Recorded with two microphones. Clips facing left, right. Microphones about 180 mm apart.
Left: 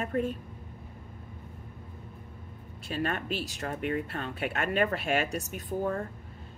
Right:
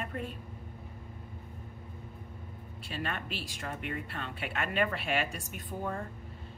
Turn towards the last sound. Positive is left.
turn(degrees=45)  # may be behind; listen again after turning